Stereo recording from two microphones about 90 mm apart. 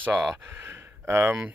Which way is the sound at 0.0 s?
25° right (ahead or behind).